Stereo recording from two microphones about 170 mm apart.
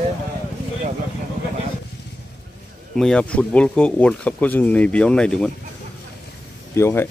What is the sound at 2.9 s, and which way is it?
Speech, 5° left (ahead or behind).